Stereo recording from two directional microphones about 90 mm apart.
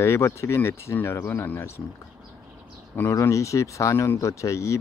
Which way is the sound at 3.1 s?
35° left (ahead or behind).